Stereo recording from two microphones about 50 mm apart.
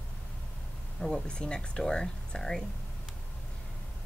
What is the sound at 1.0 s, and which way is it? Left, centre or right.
Speech, centre.